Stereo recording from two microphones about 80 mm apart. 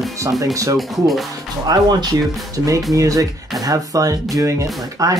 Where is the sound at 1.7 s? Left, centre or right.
Right.